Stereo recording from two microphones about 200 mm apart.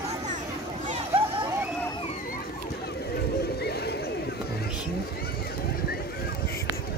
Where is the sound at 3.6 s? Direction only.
55° left (ahead or behind).